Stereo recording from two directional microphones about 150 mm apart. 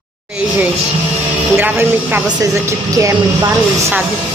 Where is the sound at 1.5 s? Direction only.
15° right (ahead or behind).